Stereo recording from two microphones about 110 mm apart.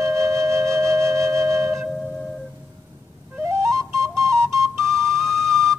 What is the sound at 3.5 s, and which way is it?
Flute, 25° right (ahead or behind).